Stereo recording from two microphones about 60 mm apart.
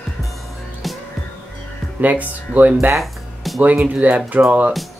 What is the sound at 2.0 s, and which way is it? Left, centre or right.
Speech, right.